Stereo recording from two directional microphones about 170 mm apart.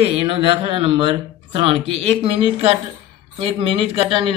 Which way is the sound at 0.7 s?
35° right (ahead or behind).